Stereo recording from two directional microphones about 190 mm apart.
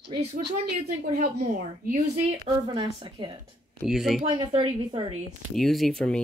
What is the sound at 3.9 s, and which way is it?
Speech, centre (ahead or behind).